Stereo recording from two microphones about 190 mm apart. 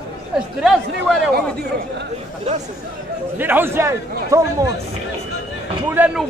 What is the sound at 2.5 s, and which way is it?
Speech, 35° right (ahead or behind).